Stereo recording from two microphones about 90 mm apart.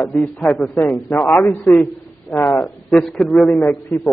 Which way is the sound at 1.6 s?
5° left (ahead or behind).